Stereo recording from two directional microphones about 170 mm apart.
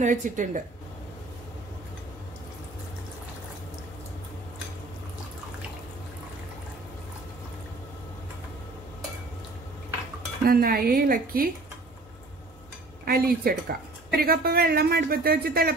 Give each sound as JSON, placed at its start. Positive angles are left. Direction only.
{"t": 0.0, "sound": "speech", "side_deg": -50}
{"t": 10.4, "sound": "a woman's voice", "side_deg": -60}
{"t": 13.0, "sound": "a woman's voice", "side_deg": -60}